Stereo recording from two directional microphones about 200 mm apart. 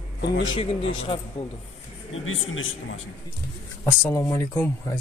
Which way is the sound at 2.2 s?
85° left.